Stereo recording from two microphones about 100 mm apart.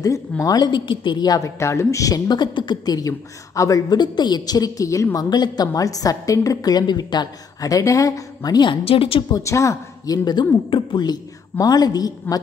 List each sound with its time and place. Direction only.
0.0 s a woman's voice: 35° left (ahead or behind)
0.6 s a woman's voice: 50° left (ahead or behind)
1.6 s a woman's voice: 30° left (ahead or behind)
8.8 s a woman's voice: 70° left (ahead or behind)
9.3 s a woman's voice: 30° left (ahead or behind)